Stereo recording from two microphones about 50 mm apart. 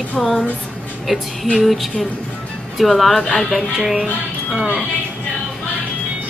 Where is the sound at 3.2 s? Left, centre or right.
Centre.